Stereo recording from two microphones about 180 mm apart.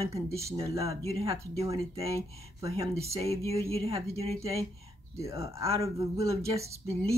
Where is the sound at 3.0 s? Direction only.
35° right (ahead or behind).